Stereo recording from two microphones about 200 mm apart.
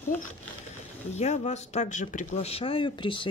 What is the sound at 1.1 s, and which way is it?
Speech, 35° left (ahead or behind).